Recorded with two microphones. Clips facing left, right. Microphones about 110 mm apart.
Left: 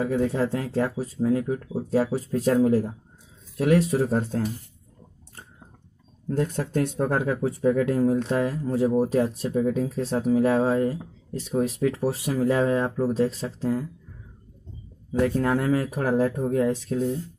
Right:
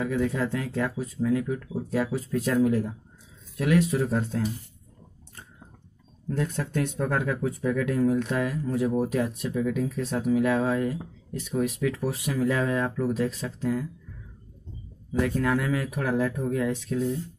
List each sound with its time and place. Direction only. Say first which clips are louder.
0.0 s speech: left 3 dB; 35° left (ahead or behind)
6.2 s speech: left 3 dB; 35° left (ahead or behind)
15.2 s speech: left 3 dB; 35° left (ahead or behind)